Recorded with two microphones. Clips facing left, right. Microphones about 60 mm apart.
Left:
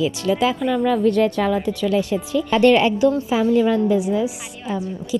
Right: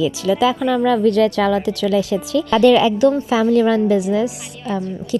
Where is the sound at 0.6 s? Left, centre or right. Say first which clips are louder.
Right 3 dB; right.